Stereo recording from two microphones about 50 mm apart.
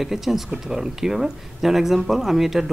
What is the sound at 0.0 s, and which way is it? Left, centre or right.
Speech, centre.